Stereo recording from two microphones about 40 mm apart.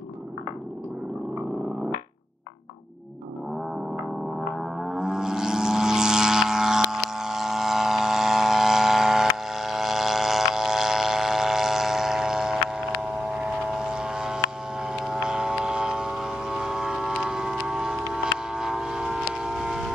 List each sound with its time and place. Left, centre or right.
4.4 s vehicle: centre